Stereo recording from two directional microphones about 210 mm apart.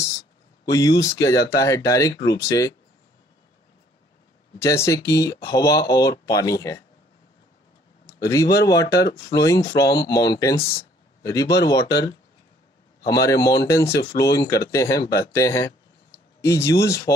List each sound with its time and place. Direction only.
0.7 s speech: 15° left (ahead or behind)
4.6 s speech: 15° left (ahead or behind)
8.1 s speech: 15° left (ahead or behind)